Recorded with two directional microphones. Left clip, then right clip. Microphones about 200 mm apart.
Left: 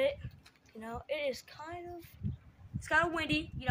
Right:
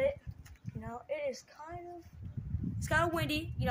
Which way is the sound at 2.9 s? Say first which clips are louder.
Left 1 dB; 55° right (ahead or behind).